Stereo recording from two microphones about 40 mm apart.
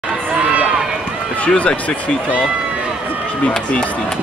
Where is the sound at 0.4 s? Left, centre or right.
Right.